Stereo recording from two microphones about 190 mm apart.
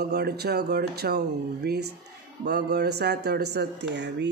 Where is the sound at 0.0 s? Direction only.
60° right (ahead or behind).